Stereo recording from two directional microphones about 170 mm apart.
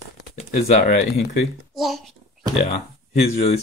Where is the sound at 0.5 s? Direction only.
65° left (ahead or behind).